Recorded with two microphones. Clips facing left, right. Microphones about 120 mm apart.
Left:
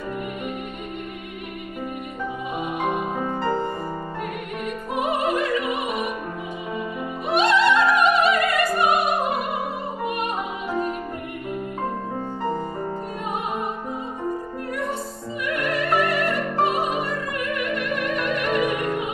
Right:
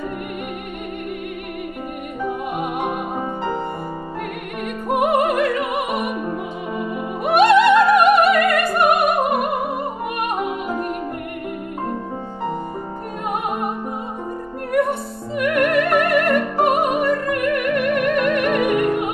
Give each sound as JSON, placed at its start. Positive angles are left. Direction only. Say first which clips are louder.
{"t": 4.8, "sound": "music", "louder": "right 7 dB", "side_deg": -55}
{"t": 7.2, "sound": "music", "louder": "right 6 dB", "side_deg": -55}
{"t": 14.7, "sound": "music", "louder": "right 10 dB", "side_deg": -60}